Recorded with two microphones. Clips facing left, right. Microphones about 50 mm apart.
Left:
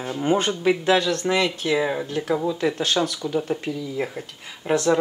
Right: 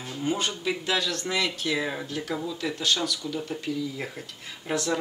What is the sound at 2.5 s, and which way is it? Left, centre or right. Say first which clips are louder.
Speech: left 6 dB; left.